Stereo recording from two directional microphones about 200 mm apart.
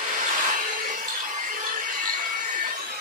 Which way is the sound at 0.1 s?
40° right (ahead or behind).